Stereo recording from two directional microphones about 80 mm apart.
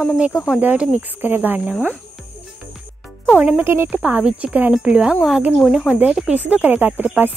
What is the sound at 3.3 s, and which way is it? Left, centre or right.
Speech, centre.